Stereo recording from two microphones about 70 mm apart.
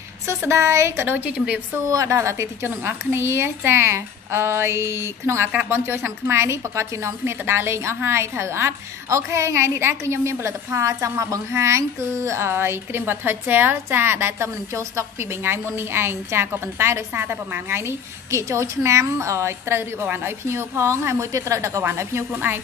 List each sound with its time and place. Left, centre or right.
0.3 s a woman's voice: right
1.0 s a woman's voice: right
1.9 s a woman's voice: right
2.6 s a woman's voice: right